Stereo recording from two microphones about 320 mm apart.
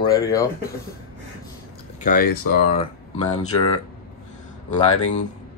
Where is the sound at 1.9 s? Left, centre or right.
Left.